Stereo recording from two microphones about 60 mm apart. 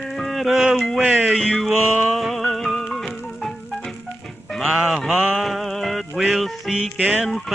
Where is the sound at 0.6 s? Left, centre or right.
Centre.